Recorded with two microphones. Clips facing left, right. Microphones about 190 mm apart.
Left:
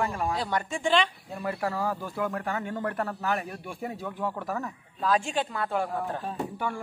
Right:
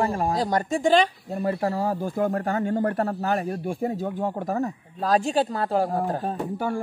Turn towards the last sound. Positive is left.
turn(degrees=-40)  # may be behind; listen again after turning